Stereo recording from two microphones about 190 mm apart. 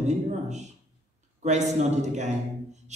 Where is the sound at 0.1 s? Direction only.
35° right (ahead or behind).